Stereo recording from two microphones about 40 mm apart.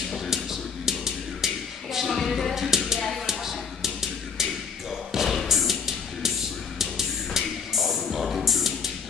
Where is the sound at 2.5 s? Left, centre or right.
Centre.